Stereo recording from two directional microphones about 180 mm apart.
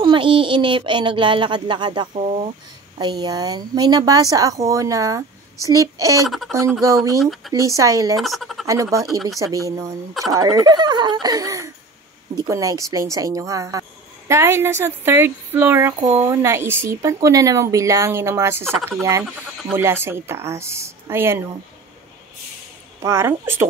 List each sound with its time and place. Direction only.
0.0 s speech: 25° right (ahead or behind)
3.0 s speech: 25° right (ahead or behind)
6.2 s speech: centre (ahead or behind)
7.5 s a woman's voice: 20° right (ahead or behind)
8.2 s speech: centre (ahead or behind)
8.6 s a woman's voice: 20° right (ahead or behind)
23.0 s a woman's voice: 15° right (ahead or behind)